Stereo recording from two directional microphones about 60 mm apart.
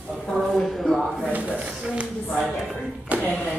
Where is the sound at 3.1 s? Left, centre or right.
Right.